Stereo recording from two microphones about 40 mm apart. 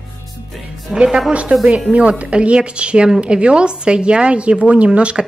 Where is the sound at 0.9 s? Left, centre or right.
Right.